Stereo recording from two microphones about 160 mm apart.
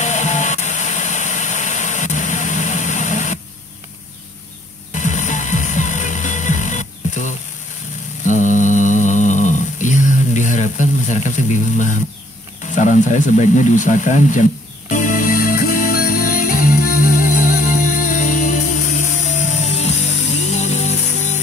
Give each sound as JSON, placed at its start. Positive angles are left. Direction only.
{"t": 0.0, "sound": "vehicle", "side_deg": 45}
{"t": 4.9, "sound": "music", "side_deg": 50}
{"t": 8.3, "sound": "a sound", "side_deg": 50}
{"t": 12.7, "sound": "speech", "side_deg": 50}
{"t": 14.9, "sound": "music", "side_deg": 55}